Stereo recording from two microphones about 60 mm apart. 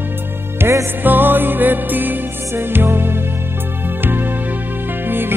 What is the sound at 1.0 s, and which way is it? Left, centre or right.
Music, right.